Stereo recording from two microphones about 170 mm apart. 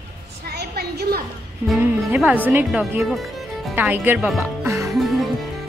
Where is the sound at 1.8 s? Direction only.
10° right (ahead or behind).